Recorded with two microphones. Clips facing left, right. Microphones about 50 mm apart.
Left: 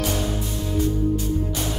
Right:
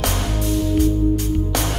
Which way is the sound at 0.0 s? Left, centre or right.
Right.